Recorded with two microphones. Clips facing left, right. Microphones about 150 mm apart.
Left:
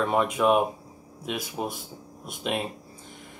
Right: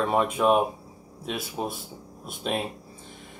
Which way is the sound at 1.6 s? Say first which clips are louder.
Right 1 dB; 15° right (ahead or behind).